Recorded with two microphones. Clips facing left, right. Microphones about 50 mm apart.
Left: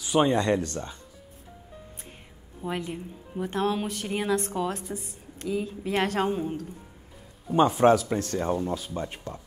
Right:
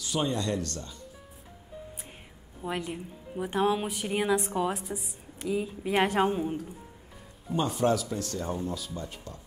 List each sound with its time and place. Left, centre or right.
0.2 s speech: left
2.6 s a woman's voice: centre
7.5 s speech: left